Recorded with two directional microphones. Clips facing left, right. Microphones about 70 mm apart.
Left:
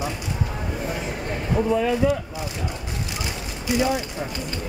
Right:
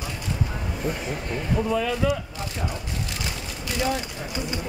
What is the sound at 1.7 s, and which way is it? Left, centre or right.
Speech, left.